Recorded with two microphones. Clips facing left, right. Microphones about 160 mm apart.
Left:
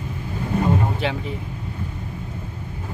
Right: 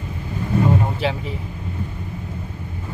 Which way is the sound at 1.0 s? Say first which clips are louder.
Right 2 dB; 5° right (ahead or behind).